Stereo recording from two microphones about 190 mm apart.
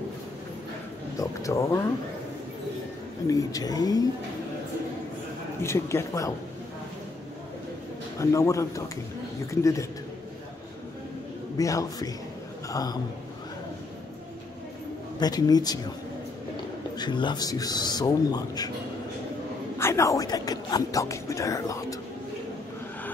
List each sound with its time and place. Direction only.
1.1 s speech: 15° left (ahead or behind)
3.3 s speech: 20° left (ahead or behind)
5.6 s speech: 15° left (ahead or behind)
8.2 s speech: 15° left (ahead or behind)
11.5 s a man's voice: 20° left (ahead or behind)
15.1 s speech: 20° left (ahead or behind)
16.9 s speech: 25° left (ahead or behind)
19.8 s speech: 15° left (ahead or behind)